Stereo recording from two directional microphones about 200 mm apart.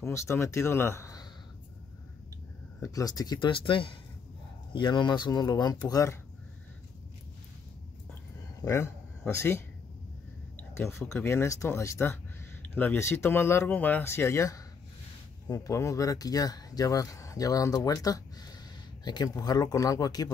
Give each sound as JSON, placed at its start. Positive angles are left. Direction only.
{"t": 0.0, "sound": "speech", "side_deg": 15}
{"t": 2.8, "sound": "speech", "side_deg": 15}
{"t": 8.1, "sound": "a sound", "side_deg": 15}
{"t": 10.8, "sound": "speech", "side_deg": 15}